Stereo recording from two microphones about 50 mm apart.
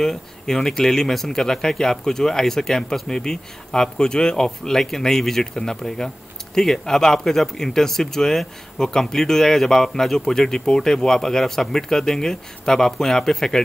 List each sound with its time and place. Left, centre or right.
0.0 s speech: centre